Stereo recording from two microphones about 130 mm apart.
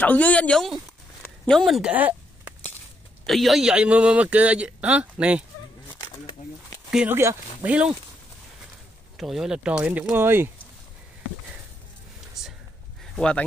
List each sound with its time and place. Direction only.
0.0 s speech: 10° left (ahead or behind); by 2.1 s 10° right (ahead or behind)
3.3 s speech: centre (ahead or behind)
5.9 s a sound: 30° left (ahead or behind)
7.1 s speech: 15° right (ahead or behind)
9.1 s speech: centre (ahead or behind); by 10.5 s 15° right (ahead or behind)
12.4 s a sound: 5° right (ahead or behind)
13.1 s speech: 5° left (ahead or behind)